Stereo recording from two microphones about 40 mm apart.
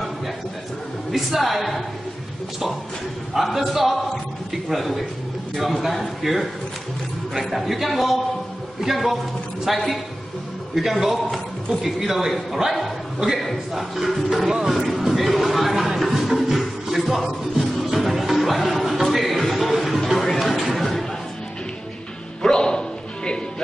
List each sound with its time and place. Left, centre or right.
1.1 s a man's voice: centre
3.3 s a man's voice: centre
7.6 s a man's voice: centre
15.7 s music: centre
20.6 s a sound: centre
22.4 s bow-wow: centre